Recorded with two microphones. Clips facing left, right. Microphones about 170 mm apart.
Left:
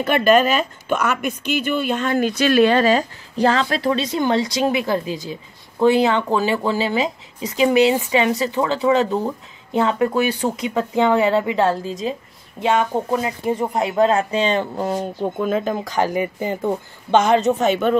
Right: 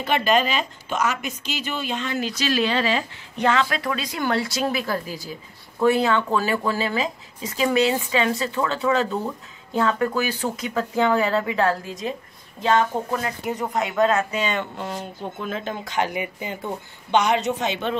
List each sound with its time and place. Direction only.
0.0 s speech: 50° left (ahead or behind)